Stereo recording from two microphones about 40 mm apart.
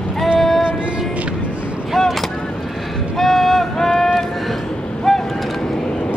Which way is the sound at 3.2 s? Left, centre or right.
Centre.